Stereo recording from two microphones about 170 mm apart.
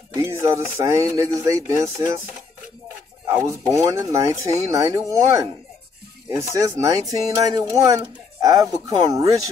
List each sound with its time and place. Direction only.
0.1 s speech: 15° right (ahead or behind)
3.3 s speech: 15° right (ahead or behind)